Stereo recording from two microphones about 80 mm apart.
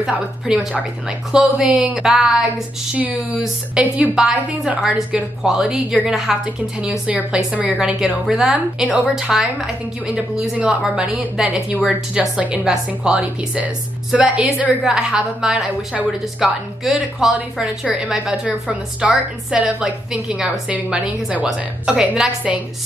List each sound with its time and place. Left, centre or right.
1.0 s a woman's voice: centre
2.9 s speech: centre
3.3 s a woman's voice: centre
7.1 s a woman's voice: centre
18.5 s a woman's voice: centre